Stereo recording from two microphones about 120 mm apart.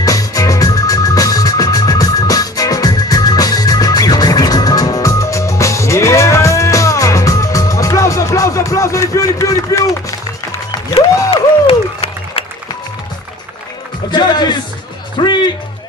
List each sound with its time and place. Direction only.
0.0 s music: 30° left (ahead or behind)
11.2 s music: 50° left (ahead or behind)
14.1 s music: 35° left (ahead or behind)